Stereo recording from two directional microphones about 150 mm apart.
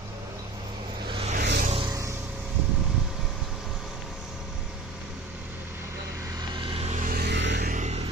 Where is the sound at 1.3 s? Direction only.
65° right (ahead or behind).